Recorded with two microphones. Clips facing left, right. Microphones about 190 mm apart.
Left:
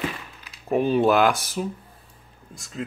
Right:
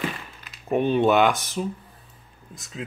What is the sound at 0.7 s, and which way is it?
Speech, centre (ahead or behind).